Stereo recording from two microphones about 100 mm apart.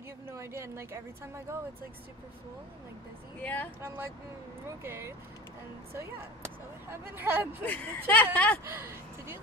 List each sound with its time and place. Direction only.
0.3 s speech: 30° right (ahead or behind)
3.4 s speech: 15° left (ahead or behind)
3.8 s speech: 25° right (ahead or behind)
6.9 s speech: 20° right (ahead or behind)
7.6 s speech: 15° left (ahead or behind)
8.6 s speech: 25° right (ahead or behind)